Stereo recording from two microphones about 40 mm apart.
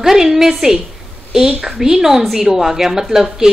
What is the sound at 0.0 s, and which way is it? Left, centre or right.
A woman's voice, centre.